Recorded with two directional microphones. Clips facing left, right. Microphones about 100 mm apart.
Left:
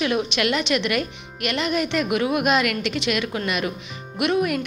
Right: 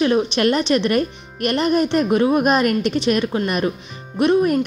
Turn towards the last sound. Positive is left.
turn(degrees=-35)  # may be behind; listen again after turning